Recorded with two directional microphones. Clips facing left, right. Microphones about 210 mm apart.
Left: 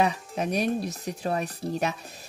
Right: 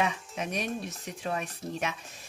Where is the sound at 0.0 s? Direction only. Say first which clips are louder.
Left 5 dB; 35° left (ahead or behind).